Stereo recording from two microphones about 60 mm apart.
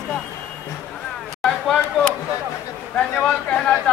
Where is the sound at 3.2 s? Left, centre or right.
Centre.